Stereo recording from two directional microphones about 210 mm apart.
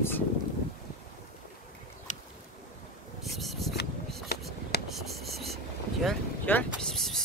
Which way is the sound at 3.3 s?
Centre (ahead or behind).